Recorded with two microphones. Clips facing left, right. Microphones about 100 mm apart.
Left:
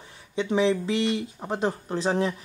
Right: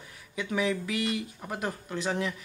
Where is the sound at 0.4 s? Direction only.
25° left (ahead or behind).